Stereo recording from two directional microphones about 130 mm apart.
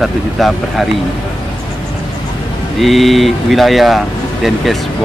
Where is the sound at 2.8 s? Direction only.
Centre (ahead or behind).